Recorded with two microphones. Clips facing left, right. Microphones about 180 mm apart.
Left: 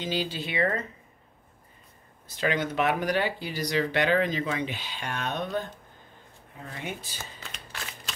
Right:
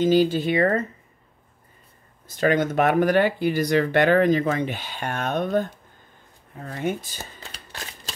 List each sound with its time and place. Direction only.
0.0 s speech: 45° right (ahead or behind)
2.2 s speech: 45° right (ahead or behind)
6.7 s shuffling cards: 45° right (ahead or behind)